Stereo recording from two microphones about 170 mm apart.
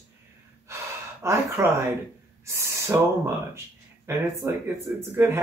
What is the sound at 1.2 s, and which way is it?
Speech, 15° right (ahead or behind).